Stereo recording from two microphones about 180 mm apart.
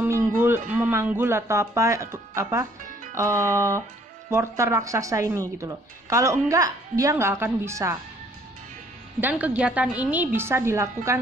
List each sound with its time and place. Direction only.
0.4 s speech: 10° right (ahead or behind)
9.2 s speech: 10° right (ahead or behind)